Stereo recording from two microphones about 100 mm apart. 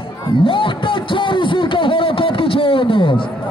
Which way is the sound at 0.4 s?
60° left (ahead or behind).